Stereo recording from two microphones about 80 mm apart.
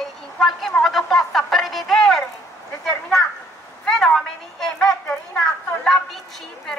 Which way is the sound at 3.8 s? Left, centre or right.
Centre.